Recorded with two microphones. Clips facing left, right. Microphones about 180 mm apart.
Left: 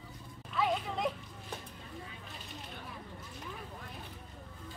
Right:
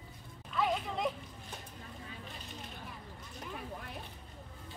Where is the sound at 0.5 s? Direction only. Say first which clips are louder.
Left 1 dB; centre (ahead or behind).